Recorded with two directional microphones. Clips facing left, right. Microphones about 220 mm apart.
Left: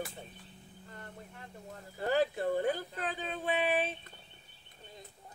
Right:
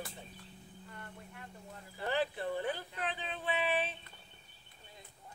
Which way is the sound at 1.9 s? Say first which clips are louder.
Left 5 dB; 45° left (ahead or behind).